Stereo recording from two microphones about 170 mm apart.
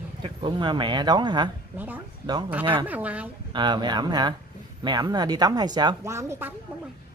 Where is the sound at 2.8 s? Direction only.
10° right (ahead or behind).